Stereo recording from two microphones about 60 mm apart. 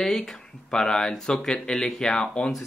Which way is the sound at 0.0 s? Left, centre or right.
Centre.